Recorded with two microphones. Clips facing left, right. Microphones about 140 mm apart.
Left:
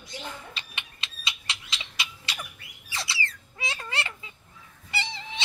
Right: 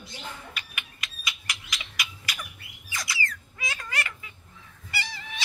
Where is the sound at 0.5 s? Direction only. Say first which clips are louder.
Right 1 dB; 25° left (ahead or behind).